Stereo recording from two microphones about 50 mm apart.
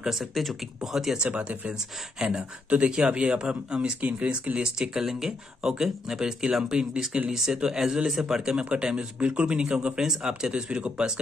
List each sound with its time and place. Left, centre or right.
0.0 s speech: centre
1.1 s speech: centre
8.4 s speech: centre
10.5 s speech: right